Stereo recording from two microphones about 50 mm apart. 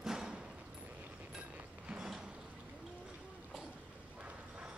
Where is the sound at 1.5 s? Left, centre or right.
Right.